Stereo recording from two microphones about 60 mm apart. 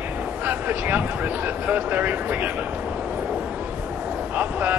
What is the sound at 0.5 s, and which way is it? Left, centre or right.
Speech, right.